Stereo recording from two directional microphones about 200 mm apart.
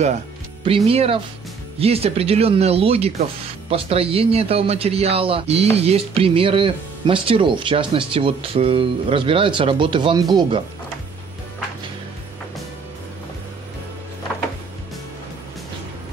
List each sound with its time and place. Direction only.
0.7 s speech: 30° right (ahead or behind)